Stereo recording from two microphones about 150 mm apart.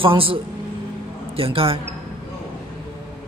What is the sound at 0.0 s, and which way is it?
Speech, 35° right (ahead or behind).